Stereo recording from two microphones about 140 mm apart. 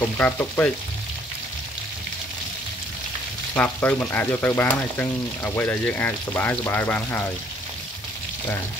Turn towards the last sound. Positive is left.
turn(degrees=15)  # may be behind; listen again after turning